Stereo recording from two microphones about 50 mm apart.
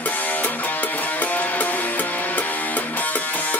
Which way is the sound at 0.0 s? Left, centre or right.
Left.